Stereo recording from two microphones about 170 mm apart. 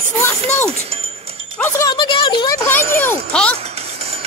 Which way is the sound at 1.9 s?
25° left (ahead or behind).